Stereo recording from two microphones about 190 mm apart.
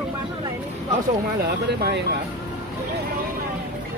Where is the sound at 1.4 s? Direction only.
60° right (ahead or behind).